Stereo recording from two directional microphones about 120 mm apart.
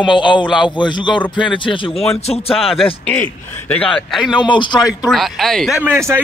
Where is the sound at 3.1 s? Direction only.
15° left (ahead or behind); by 4.4 s centre (ahead or behind).